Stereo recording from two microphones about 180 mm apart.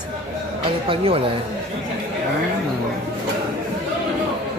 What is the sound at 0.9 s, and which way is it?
Speech, 30° right (ahead or behind).